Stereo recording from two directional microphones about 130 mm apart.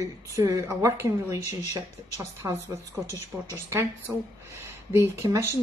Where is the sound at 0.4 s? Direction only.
25° right (ahead or behind).